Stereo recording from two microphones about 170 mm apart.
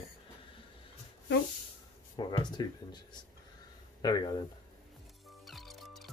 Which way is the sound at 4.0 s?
25° left (ahead or behind).